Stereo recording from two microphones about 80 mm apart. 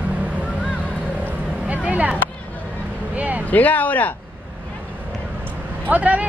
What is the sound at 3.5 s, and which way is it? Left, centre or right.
Speech, left.